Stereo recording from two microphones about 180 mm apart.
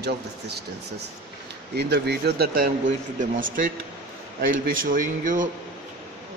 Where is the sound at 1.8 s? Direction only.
65° right (ahead or behind).